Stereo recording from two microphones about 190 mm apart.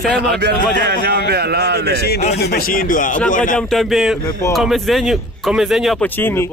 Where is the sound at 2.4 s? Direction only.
50° left (ahead or behind).